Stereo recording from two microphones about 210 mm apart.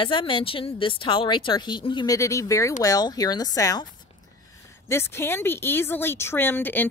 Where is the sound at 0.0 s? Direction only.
25° left (ahead or behind).